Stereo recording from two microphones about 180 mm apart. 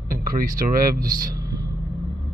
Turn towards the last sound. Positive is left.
turn(degrees=-55)  # may be behind; listen again after turning